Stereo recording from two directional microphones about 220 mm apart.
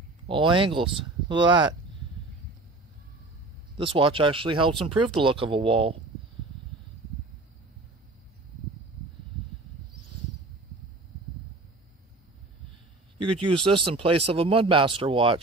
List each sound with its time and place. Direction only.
0.3 s speech: 20° right (ahead or behind)
3.7 s speech: 25° right (ahead or behind)
13.2 s a man's voice: 25° right (ahead or behind)